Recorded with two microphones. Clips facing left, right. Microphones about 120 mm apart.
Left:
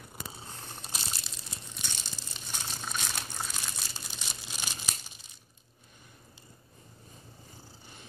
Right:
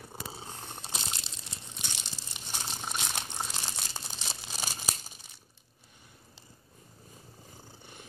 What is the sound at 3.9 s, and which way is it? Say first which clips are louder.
Crumpling: right 2 dB; 40° right (ahead or behind).